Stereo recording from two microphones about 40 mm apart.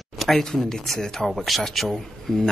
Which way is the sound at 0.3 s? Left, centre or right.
Centre.